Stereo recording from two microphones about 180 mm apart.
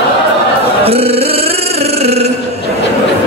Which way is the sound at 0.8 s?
35° right (ahead or behind).